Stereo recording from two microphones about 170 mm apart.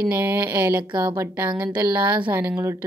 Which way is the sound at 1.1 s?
10° right (ahead or behind).